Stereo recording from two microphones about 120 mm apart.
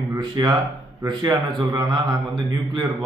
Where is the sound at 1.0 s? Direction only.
35° right (ahead or behind).